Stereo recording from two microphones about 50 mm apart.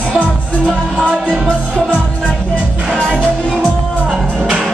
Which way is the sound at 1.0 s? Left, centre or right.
Centre.